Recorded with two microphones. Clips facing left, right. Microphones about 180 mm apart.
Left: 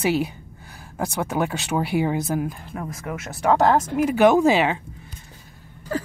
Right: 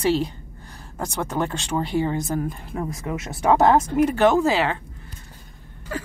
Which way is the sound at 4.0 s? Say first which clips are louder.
Left 1 dB; 10° left (ahead or behind).